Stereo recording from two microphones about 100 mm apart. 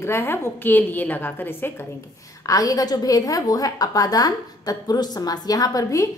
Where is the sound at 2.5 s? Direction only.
35° left (ahead or behind).